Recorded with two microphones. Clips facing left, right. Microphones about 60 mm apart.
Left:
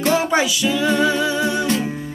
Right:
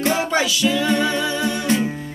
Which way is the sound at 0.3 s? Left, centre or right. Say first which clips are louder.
Left 1 dB; centre.